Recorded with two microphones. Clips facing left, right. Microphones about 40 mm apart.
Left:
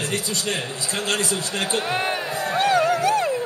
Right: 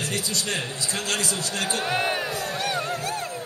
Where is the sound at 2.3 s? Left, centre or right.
Left.